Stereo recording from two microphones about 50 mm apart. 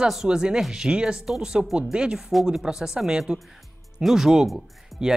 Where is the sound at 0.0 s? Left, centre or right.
Centre.